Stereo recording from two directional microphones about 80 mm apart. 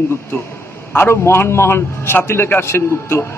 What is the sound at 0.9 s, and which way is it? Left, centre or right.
A man's voice, left.